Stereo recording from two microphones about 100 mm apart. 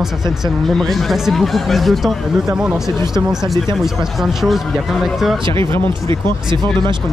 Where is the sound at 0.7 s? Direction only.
Centre (ahead or behind).